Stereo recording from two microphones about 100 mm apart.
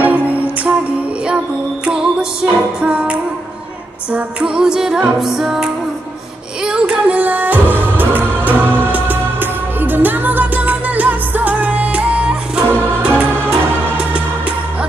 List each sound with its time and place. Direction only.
0.0 s music: 15° right (ahead or behind)
1.9 s music: 10° right (ahead or behind)